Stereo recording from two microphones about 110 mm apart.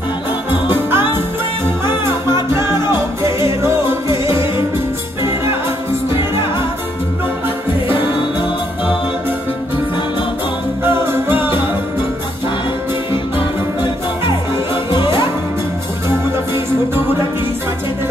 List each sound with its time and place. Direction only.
0.7 s music: 20° right (ahead or behind)
2.5 s music: 25° right (ahead or behind)
10.8 s music: 20° right (ahead or behind)